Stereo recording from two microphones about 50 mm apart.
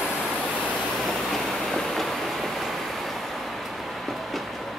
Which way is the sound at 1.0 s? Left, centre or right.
Centre.